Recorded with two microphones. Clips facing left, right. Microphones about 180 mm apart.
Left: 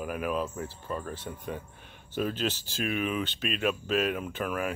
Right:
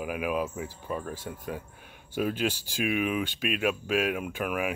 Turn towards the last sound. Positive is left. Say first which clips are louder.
# right 1 dB
turn(degrees=-10)  # may be behind; listen again after turning